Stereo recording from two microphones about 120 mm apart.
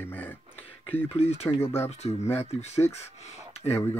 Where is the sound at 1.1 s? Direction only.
60° left (ahead or behind).